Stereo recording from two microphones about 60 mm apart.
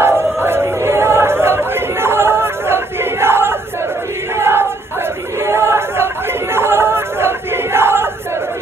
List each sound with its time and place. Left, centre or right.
0.0 s a sound: right
4.4 s choir: right
6.5 s battle cry: right